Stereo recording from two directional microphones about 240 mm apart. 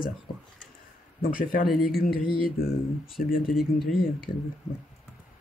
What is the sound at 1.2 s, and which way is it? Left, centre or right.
Speech, left.